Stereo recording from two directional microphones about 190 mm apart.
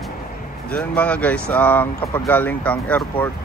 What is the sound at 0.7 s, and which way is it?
Speech, 5° left (ahead or behind).